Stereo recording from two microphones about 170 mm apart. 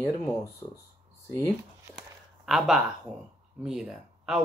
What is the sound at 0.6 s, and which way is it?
Speech, 25° left (ahead or behind).